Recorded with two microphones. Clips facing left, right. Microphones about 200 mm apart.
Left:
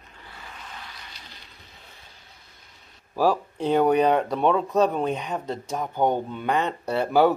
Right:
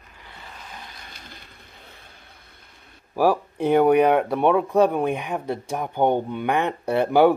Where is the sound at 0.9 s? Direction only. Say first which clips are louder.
Right 2 dB; 50° right (ahead or behind).